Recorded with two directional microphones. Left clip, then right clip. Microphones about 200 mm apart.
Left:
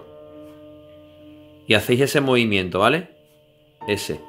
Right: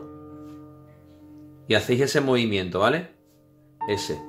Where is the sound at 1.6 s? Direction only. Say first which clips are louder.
Left 4 dB; 35° left (ahead or behind).